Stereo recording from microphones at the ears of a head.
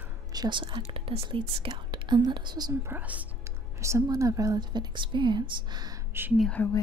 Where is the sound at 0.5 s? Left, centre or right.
Right.